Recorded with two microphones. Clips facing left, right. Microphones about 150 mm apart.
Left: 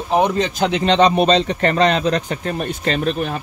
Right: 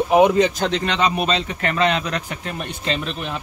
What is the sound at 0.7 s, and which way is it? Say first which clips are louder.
A man's voice: left 6 dB; 30° left (ahead or behind).